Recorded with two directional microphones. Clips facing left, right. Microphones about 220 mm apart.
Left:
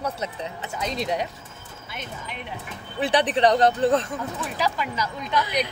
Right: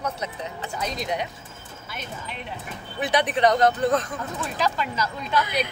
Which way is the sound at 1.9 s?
20° left (ahead or behind).